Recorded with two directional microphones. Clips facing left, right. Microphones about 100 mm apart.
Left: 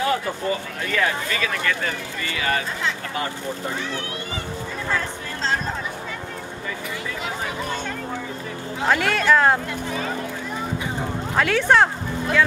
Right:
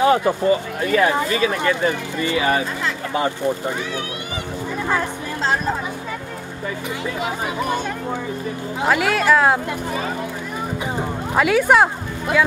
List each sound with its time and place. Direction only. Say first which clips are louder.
0.0 s speech: right 7 dB; 25° right (ahead or behind)
4.8 s music: right 4 dB; 15° right (ahead or behind)
8.8 s speech: right 2 dB; 5° right (ahead or behind)
11.3 s speech: right 3 dB; 10° right (ahead or behind)